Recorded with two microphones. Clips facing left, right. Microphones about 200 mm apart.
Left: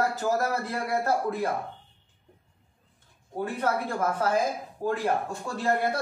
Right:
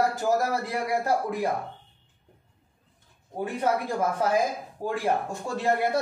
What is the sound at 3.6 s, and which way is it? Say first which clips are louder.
A man's voice: right 2 dB; 15° right (ahead or behind).